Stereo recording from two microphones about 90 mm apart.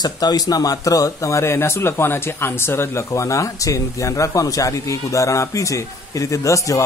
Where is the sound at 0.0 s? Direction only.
45° left (ahead or behind).